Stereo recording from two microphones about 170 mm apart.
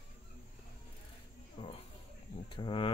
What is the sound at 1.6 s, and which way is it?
Speech, 35° left (ahead or behind).